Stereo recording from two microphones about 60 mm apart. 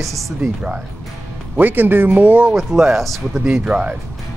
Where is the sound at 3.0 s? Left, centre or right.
Centre.